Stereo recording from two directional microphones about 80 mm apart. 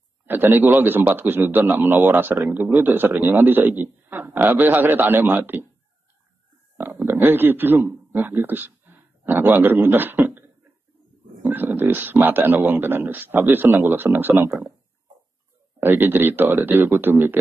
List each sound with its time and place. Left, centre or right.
0.3 s speech: right
7.1 s a man's voice: right
11.5 s speech: right
15.8 s speech: right